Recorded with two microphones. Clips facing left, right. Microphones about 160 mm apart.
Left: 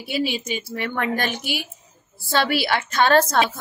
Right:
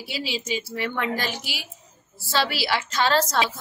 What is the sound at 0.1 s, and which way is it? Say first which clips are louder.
A woman's voice: left 5 dB; 55° left (ahead or behind).